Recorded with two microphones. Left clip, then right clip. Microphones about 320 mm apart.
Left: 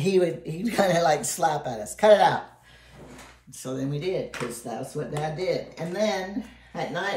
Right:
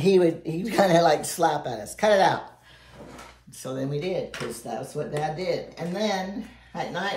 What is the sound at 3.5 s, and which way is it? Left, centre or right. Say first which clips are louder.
Speech: right 2 dB; centre.